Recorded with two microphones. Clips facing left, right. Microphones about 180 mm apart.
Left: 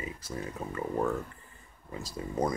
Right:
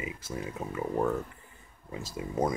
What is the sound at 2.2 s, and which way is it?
Speech, 10° right (ahead or behind).